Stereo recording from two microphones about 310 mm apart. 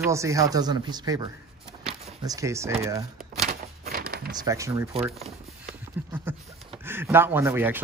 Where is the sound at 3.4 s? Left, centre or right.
Right.